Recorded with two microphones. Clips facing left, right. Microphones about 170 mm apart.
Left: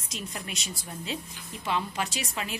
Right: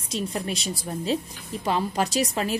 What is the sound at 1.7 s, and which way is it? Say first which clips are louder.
Speech: right 6 dB; 40° right (ahead or behind).